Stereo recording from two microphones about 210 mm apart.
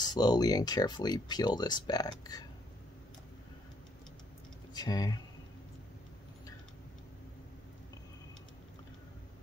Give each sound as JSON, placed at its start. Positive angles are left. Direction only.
{"t": 0.0, "sound": "speech", "side_deg": 20}
{"t": 4.7, "sound": "speech", "side_deg": 20}